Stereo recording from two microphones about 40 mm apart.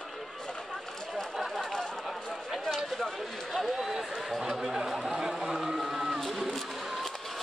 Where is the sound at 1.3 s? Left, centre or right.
Centre.